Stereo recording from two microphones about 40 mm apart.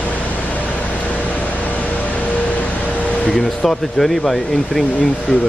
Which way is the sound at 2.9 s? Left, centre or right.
Left.